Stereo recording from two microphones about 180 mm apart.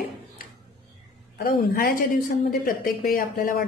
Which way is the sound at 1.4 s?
55° left (ahead or behind).